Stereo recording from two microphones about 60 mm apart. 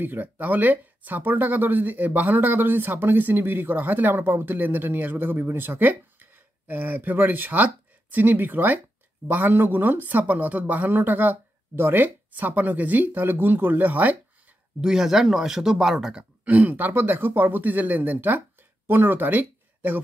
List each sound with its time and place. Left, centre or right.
0.0 s speech: right
14.8 s speech: centre
16.4 s speech: right